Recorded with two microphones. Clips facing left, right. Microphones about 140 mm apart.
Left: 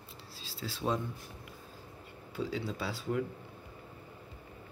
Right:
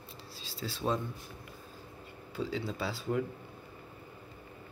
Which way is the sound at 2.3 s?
5° left (ahead or behind).